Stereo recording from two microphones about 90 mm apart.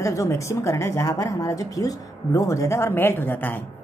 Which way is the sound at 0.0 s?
35° left (ahead or behind).